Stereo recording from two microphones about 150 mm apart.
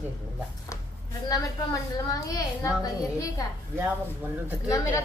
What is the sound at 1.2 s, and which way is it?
A woman's voice, 25° left (ahead or behind).